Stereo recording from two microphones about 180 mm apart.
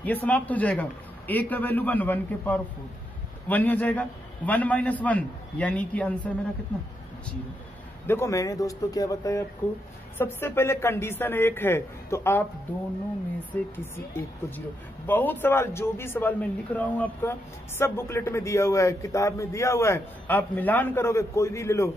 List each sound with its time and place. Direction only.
0.0 s a man's voice: 10° left (ahead or behind)
8.1 s a man's voice: 15° left (ahead or behind)
13.5 s a man's voice: 10° left (ahead or behind)
15.0 s a man's voice: 10° left (ahead or behind)